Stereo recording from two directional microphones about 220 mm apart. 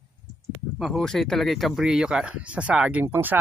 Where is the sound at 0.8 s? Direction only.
Centre (ahead or behind).